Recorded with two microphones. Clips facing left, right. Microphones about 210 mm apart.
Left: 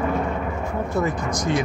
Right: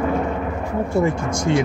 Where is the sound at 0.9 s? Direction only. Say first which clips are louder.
Right 4 dB; 25° right (ahead or behind).